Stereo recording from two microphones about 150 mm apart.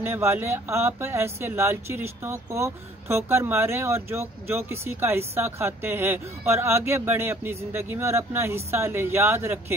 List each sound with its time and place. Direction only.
0.0 s speech: 15° right (ahead or behind)